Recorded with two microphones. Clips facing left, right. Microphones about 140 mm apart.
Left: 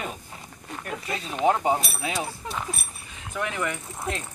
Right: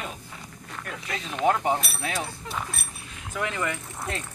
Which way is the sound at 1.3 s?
15° left (ahead or behind).